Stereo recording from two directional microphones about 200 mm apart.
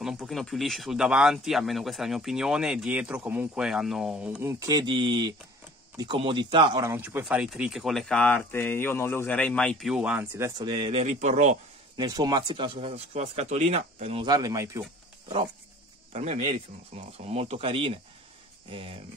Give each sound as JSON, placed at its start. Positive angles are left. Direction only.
{"t": 0.0, "sound": "speech", "side_deg": 0}
{"t": 12.0, "sound": "speech", "side_deg": -20}
{"t": 16.1, "sound": "speech", "side_deg": -30}